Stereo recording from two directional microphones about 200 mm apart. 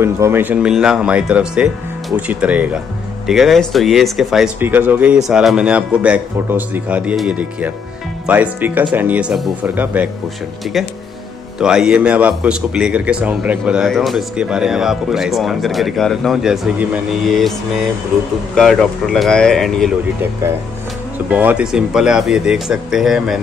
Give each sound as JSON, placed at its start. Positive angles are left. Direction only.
{"t": 0.0, "sound": "a man's voice", "side_deg": -10}
{"t": 11.6, "sound": "a man's voice", "side_deg": -5}
{"t": 21.3, "sound": "a man's voice", "side_deg": -10}